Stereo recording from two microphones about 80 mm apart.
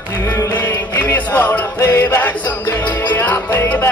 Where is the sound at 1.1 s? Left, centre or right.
Centre.